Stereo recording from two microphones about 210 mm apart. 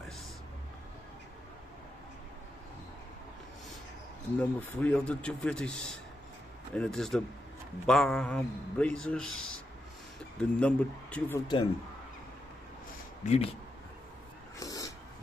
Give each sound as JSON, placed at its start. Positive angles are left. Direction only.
{"t": 4.4, "sound": "a man's voice", "side_deg": 5}
{"t": 10.6, "sound": "speech", "side_deg": 5}
{"t": 13.2, "sound": "speech", "side_deg": 30}
{"t": 14.6, "sound": "dog", "side_deg": 15}